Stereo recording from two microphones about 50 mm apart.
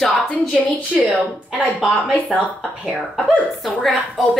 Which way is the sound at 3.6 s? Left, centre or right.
Centre.